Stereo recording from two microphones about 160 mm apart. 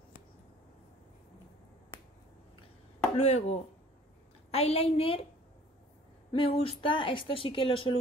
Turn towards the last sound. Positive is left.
turn(degrees=35)  # may be behind; listen again after turning